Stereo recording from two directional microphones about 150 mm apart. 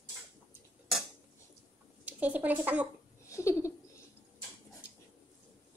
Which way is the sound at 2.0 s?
10° right (ahead or behind).